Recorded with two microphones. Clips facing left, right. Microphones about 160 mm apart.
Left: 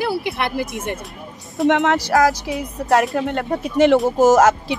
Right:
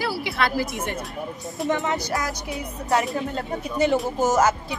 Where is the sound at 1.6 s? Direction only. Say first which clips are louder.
Left 8 dB; 80° left.